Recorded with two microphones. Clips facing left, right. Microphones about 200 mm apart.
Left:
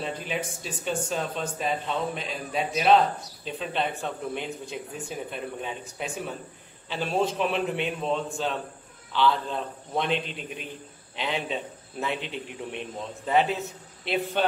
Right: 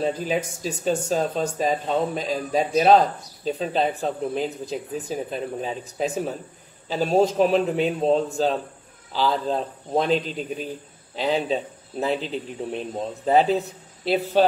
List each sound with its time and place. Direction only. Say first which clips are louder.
0.0 s speech: right 7 dB; 40° right (ahead or behind)